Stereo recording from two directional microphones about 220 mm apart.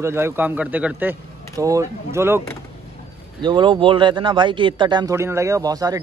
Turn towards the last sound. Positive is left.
turn(degrees=-15)  # may be behind; listen again after turning